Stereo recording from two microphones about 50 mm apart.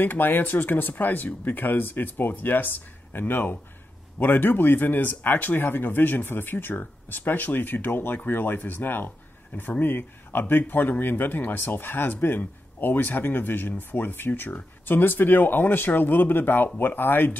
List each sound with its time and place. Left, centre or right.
0.0 s speech: left